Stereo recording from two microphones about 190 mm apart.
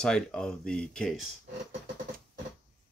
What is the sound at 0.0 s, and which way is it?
Speech, 5° left (ahead or behind).